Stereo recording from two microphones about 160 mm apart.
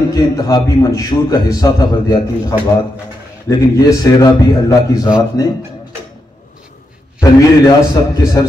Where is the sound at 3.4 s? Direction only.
20° left (ahead or behind).